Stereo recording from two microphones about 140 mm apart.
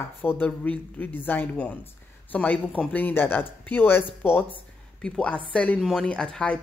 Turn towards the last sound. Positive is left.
turn(degrees=5)  # may be behind; listen again after turning